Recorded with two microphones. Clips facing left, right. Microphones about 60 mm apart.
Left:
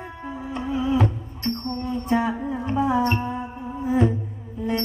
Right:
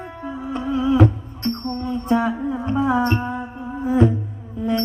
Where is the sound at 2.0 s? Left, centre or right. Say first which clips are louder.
Right 3 dB; right.